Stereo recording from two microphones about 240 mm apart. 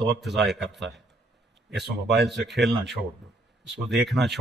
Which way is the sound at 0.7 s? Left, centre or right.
Right.